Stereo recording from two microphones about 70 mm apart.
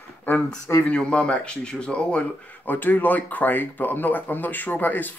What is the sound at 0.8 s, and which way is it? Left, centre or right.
Speech, centre.